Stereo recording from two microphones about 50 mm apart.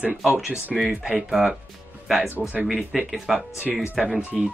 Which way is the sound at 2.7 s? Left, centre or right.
Centre.